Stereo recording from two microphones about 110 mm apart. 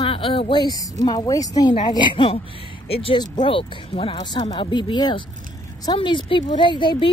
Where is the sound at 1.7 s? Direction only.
45° left (ahead or behind).